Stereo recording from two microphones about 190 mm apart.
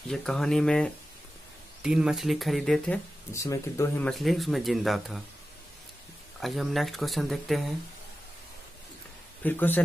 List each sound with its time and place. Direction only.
0.1 s speech: centre (ahead or behind)
3.3 s speech: 15° left (ahead or behind)
4.0 s speech: centre (ahead or behind)
6.4 s speech: centre (ahead or behind)
9.4 s speech: 10° left (ahead or behind)